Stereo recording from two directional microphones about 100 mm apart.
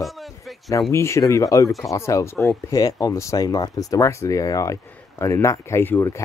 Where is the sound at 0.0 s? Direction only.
Centre (ahead or behind).